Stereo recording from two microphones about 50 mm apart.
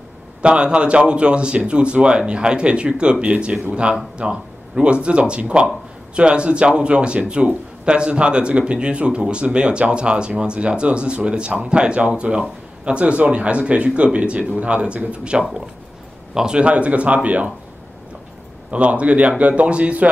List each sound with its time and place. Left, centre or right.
0.4 s speech: right
18.7 s speech: right